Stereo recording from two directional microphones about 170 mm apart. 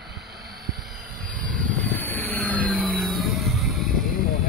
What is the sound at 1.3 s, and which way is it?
Vehicle, 5° left (ahead or behind).